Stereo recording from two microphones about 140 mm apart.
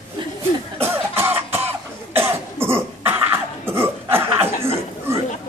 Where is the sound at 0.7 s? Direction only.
15° right (ahead or behind).